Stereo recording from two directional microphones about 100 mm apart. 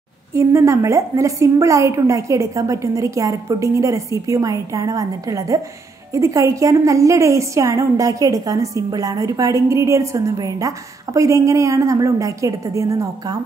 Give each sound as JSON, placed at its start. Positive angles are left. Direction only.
{"t": 0.3, "sound": "a woman's voice", "side_deg": -30}